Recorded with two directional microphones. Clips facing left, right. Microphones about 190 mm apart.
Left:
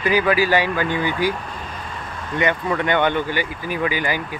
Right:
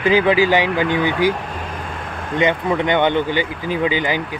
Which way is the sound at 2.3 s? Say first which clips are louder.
Right 3 dB; 20° right (ahead or behind).